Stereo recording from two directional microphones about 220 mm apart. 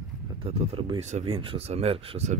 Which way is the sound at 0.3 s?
25° right (ahead or behind).